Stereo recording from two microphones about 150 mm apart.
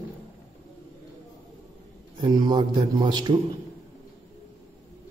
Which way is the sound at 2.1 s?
30° right (ahead or behind).